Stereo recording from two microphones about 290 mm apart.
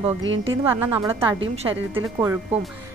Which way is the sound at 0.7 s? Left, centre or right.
Centre.